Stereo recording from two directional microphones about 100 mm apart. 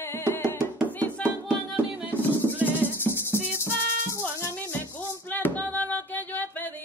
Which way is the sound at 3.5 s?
30° left (ahead or behind).